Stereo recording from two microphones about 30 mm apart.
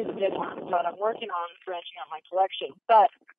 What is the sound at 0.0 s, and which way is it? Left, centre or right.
Speech, centre.